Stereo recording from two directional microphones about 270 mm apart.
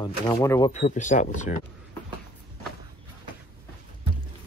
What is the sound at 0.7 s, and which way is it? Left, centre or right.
Speech, left.